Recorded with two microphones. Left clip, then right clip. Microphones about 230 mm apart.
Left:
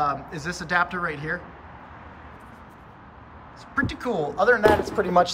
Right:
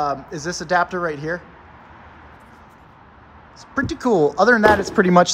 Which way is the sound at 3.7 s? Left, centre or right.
Centre.